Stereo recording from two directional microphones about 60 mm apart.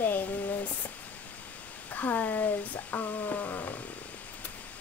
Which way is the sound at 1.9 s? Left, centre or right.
Left.